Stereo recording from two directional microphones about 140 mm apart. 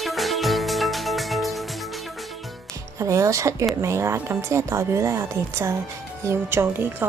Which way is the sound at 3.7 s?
20° right (ahead or behind).